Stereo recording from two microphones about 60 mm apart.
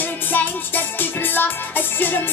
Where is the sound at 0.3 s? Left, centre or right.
Left.